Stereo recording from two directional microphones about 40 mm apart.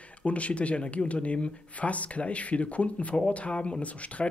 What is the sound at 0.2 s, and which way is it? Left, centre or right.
Speech, left.